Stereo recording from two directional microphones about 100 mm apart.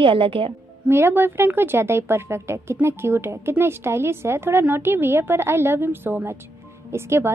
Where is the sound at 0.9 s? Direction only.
20° right (ahead or behind).